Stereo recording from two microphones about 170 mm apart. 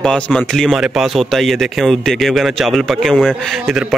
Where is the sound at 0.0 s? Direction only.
5° left (ahead or behind).